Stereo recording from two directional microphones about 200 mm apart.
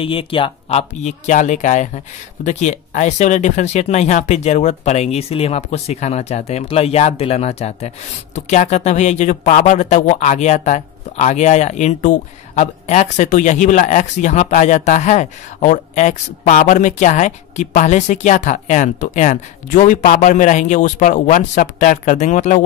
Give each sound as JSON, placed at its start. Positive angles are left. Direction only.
{"t": 0.0, "sound": "speech", "side_deg": 25}